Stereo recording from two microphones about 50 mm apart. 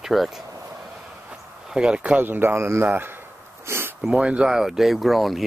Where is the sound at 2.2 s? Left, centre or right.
Right.